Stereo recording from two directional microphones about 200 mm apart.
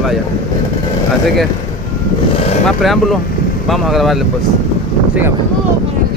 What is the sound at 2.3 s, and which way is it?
Vehicle, 30° left (ahead or behind).